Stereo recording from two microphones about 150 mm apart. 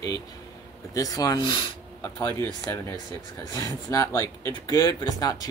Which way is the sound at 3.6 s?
20° left (ahead or behind).